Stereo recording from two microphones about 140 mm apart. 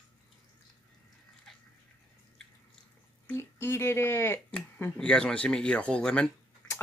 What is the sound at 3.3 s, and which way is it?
Speech, 15° left (ahead or behind).